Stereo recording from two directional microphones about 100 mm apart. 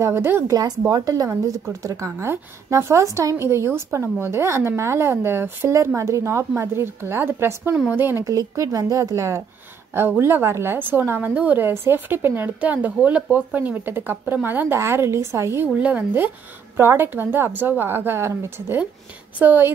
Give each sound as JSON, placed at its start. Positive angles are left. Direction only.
{"t": 0.0, "sound": "a woman's voice", "side_deg": -25}
{"t": 0.5, "sound": "a woman's voice", "side_deg": -35}
{"t": 8.2, "sound": "a woman's voice", "side_deg": -35}